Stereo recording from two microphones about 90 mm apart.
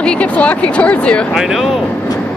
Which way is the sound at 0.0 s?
15° left (ahead or behind).